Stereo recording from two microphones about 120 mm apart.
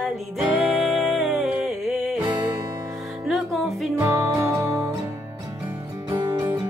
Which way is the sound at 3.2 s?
Centre (ahead or behind).